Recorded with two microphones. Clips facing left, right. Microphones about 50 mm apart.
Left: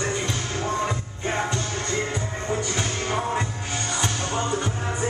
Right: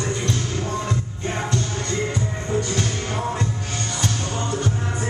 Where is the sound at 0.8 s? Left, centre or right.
Centre.